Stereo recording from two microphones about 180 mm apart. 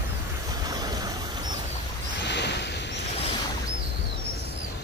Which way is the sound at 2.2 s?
70° left (ahead or behind).